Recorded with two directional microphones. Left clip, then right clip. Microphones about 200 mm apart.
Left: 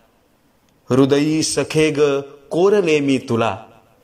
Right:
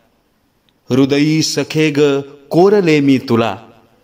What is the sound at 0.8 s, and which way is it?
Speech, 15° right (ahead or behind).